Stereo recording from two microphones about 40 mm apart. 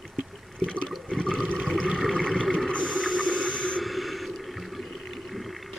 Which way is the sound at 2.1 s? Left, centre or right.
Centre.